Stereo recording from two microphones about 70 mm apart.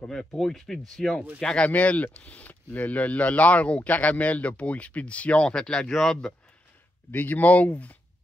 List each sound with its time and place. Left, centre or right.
0.0 s speech: centre
7.1 s speech: left